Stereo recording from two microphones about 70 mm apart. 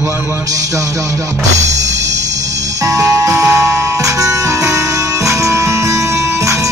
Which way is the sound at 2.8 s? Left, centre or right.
Right.